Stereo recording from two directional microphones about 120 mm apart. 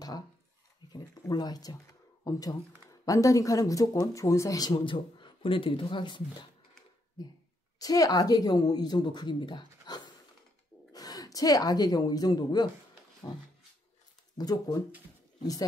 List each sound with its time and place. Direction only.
0.9 s a woman's voice: 35° left (ahead or behind)
7.8 s a woman's voice: 30° left (ahead or behind)
14.4 s a woman's voice: 35° left (ahead or behind)